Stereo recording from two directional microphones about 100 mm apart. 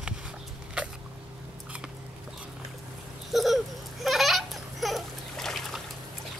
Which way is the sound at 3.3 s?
Centre (ahead or behind).